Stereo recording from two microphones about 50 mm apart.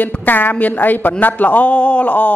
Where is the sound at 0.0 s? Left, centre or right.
Left.